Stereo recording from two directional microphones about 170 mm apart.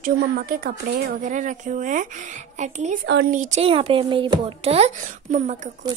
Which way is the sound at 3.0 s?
85° right.